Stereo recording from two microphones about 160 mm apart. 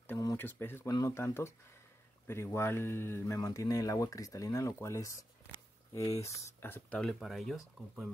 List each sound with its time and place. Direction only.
0.2 s speech: 15° left (ahead or behind); by 8.1 s centre (ahead or behind)